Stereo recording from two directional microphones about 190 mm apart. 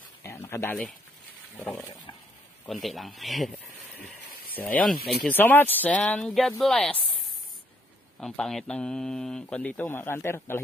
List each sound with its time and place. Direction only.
0.2 s a sound: 15° left (ahead or behind)
2.6 s speech: centre (ahead or behind)
8.2 s speech: centre (ahead or behind)